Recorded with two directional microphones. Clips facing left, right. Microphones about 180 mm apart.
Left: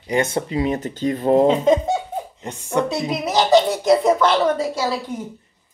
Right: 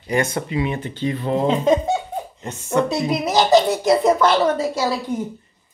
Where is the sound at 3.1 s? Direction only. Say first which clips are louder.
Even; 10° right (ahead or behind).